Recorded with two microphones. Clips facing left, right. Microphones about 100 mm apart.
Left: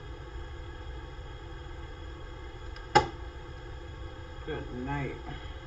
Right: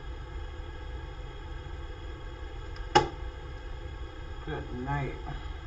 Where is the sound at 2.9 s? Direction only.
5° left (ahead or behind).